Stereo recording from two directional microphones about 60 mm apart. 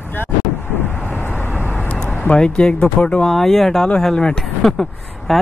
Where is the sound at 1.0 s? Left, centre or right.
Left.